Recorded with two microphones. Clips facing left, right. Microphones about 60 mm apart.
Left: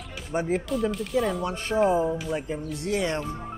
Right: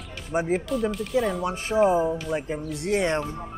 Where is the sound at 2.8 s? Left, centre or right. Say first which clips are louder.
Right 3 dB; right.